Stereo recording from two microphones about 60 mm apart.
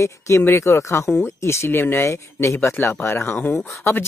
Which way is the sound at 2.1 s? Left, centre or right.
Left.